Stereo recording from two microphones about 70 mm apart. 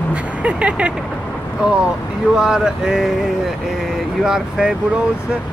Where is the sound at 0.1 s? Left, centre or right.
Centre.